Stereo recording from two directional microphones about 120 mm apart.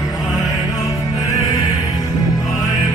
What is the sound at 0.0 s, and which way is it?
Music, 30° left (ahead or behind).